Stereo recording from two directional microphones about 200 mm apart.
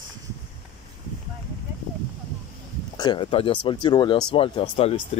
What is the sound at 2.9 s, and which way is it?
Speech, 25° left (ahead or behind).